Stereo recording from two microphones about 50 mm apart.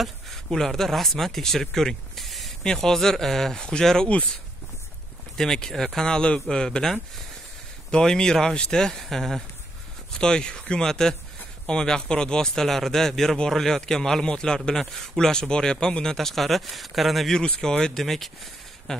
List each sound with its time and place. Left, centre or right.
0.0 s speech: centre
5.4 s speech: centre
17.3 s speech: centre